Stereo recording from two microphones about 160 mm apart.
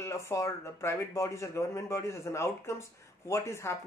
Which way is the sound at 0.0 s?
20° left (ahead or behind).